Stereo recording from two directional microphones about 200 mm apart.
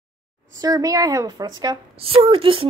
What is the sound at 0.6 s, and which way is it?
A woman's voice, 20° right (ahead or behind).